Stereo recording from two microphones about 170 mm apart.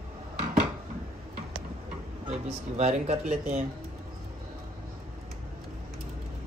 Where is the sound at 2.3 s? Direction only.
40° right (ahead or behind).